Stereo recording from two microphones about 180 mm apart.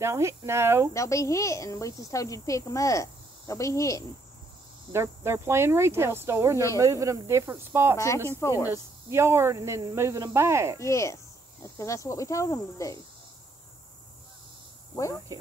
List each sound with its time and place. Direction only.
0.0 s speech: 15° right (ahead or behind)
0.9 s speech: 15° left (ahead or behind)
4.9 s speech: 15° right (ahead or behind)
8.3 s speech: 15° left (ahead or behind)
8.6 s speech: 15° right (ahead or behind)
10.8 s speech: 15° left (ahead or behind)